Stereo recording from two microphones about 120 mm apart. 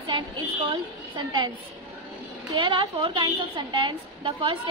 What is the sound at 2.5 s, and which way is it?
A woman's voice, 45° right (ahead or behind).